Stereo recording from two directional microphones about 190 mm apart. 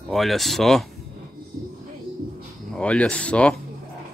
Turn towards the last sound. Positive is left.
turn(degrees=5)  # may be behind; listen again after turning